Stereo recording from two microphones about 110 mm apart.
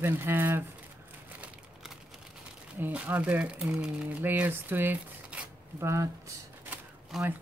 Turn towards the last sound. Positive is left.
turn(degrees=0)  # may be behind; listen again after turning